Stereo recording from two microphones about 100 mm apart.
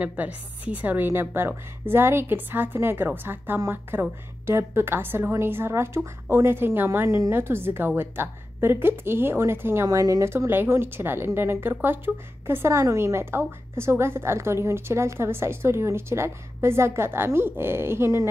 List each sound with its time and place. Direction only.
0.0 s a woman's voice: 15° right (ahead or behind)